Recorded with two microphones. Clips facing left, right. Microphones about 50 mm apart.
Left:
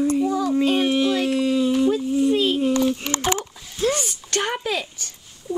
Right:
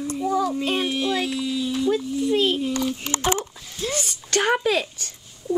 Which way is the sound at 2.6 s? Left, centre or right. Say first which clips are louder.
Left 5 dB; left.